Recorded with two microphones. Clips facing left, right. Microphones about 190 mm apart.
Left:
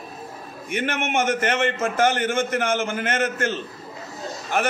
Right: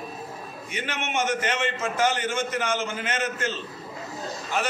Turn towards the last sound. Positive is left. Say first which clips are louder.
# left 4 dB
turn(degrees=55)  # may be behind; listen again after turning